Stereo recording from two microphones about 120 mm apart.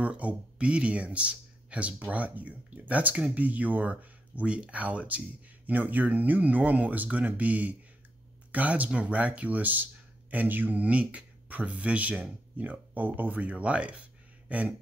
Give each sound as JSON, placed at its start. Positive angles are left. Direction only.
{"t": 0.0, "sound": "speech", "side_deg": -10}